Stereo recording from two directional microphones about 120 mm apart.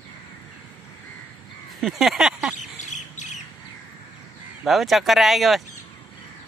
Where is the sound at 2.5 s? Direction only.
85° left.